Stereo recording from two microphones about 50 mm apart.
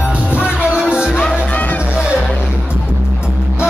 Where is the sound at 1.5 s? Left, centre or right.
Left.